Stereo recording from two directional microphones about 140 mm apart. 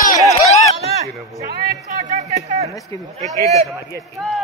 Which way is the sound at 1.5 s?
80° right.